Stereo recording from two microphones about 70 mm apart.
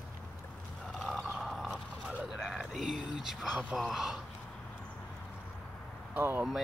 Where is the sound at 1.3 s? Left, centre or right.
Centre.